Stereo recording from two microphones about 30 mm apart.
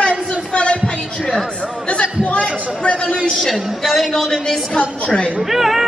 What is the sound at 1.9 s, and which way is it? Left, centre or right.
Chatter, left.